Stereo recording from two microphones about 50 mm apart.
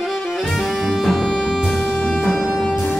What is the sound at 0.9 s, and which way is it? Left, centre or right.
Music, centre.